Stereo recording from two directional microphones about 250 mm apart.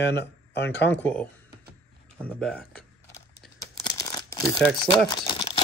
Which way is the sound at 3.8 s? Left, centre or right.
Centre.